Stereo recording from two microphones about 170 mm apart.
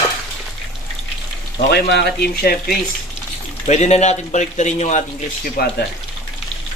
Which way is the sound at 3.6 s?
40° left (ahead or behind).